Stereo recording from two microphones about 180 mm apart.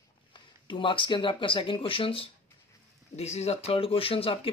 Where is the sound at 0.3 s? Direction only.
25° left (ahead or behind).